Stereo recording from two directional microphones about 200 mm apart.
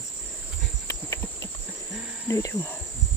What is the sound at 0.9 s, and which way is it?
Cricket, 15° left (ahead or behind).